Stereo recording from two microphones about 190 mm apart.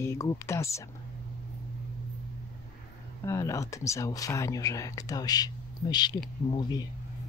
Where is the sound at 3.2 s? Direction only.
15° left (ahead or behind).